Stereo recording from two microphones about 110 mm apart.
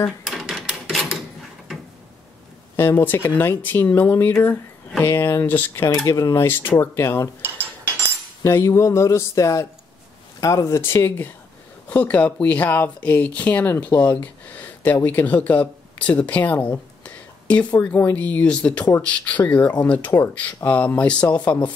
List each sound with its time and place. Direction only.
0.2 s a sound: centre (ahead or behind)
2.7 s speech: 20° left (ahead or behind)
6.0 s speech: 30° left (ahead or behind)
6.4 s speech: 20° left (ahead or behind)
7.4 s a sound: 20° right (ahead or behind)
8.5 s speech: 25° left (ahead or behind)